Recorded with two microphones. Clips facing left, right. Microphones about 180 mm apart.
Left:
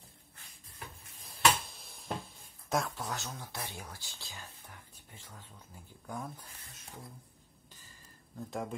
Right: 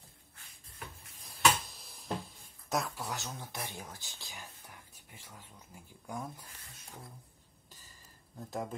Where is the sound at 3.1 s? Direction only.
20° right (ahead or behind).